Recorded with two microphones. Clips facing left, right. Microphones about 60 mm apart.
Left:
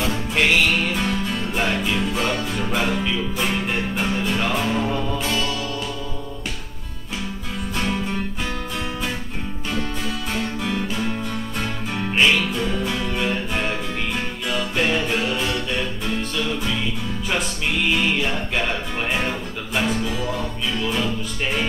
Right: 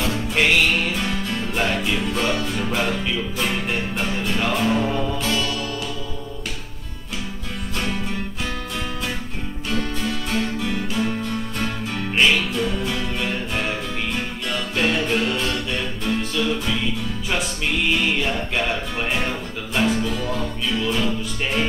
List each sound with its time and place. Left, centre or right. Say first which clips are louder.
0.1 s music: right 1 dB; centre
9.7 s music: right 2 dB; centre